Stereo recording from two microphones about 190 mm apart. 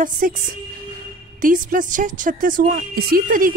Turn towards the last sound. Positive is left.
turn(degrees=-45)  # may be behind; listen again after turning